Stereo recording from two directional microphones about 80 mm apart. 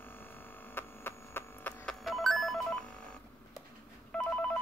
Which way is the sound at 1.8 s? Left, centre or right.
Centre.